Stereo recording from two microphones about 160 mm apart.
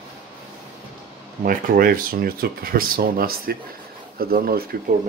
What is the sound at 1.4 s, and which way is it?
Speech, 65° right (ahead or behind).